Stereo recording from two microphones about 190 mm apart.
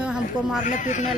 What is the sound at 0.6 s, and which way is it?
Speech, 40° left (ahead or behind).